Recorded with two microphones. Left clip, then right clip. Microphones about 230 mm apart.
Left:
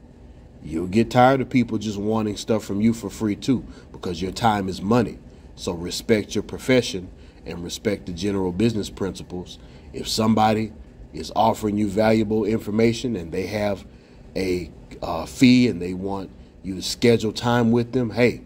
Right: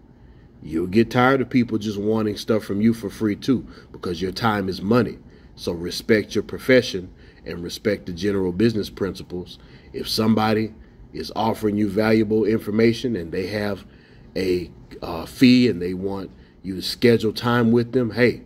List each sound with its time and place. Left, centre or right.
0.7 s speech: left